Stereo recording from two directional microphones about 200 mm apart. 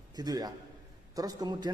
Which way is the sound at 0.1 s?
20° right (ahead or behind).